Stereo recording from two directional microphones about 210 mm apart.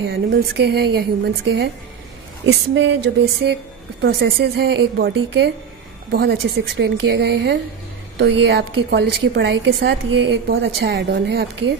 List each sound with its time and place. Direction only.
0.0 s a woman's voice: 55° right (ahead or behind)